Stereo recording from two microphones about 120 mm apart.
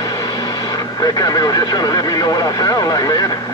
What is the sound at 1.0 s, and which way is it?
Speech, 30° left (ahead or behind).